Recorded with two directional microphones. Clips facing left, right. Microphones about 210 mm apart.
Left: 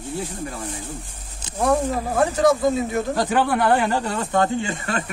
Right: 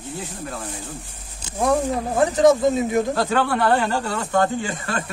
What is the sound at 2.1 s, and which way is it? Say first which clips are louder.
Speech: right 3 dB; 20° right (ahead or behind).